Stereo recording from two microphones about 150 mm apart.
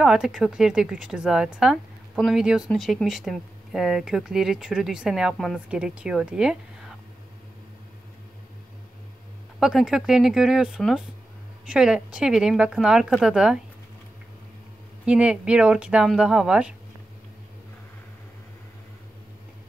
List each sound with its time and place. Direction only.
0.0 s speech: 5° right (ahead or behind)
9.6 s speech: 5° right (ahead or behind)
15.0 s speech: 5° right (ahead or behind)